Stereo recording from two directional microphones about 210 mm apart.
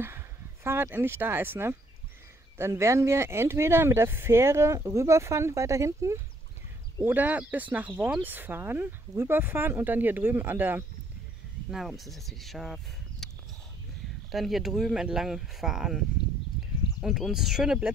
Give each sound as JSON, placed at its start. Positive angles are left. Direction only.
{"t": 0.7, "sound": "speech", "side_deg": -10}
{"t": 14.3, "sound": "speech", "side_deg": 0}
{"t": 17.0, "sound": "speech", "side_deg": 0}